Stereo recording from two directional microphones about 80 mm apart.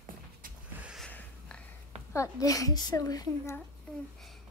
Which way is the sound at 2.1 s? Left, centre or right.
Left.